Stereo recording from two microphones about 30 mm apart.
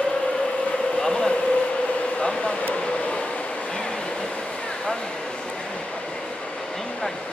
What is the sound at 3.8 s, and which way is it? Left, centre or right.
Vehicle, left.